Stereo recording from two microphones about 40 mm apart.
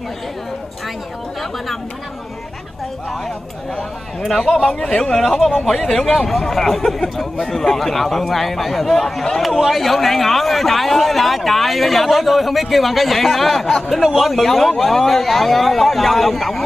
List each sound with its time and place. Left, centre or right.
4.6 s speech: centre
5.1 s a man's voice: centre